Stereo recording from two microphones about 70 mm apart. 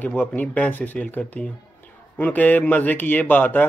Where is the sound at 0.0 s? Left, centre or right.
Left.